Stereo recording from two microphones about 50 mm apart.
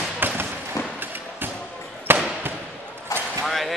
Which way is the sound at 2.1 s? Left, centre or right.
Right.